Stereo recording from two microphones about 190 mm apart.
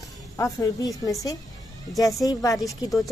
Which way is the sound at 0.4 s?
20° left (ahead or behind).